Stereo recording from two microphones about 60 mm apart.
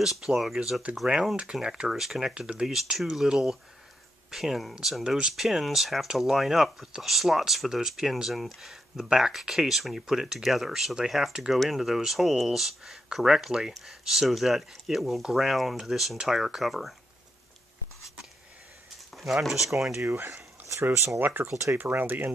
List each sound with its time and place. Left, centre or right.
0.0 s speech: centre
19.1 s speech: centre
20.2 s a sound: right
20.9 s speech: right
21.2 s speech: right